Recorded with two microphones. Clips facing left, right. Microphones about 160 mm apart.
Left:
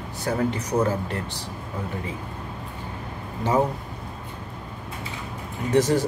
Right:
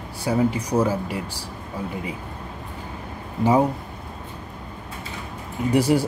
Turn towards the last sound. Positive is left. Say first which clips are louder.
# right 1 dB
turn(degrees=-10)  # may be behind; listen again after turning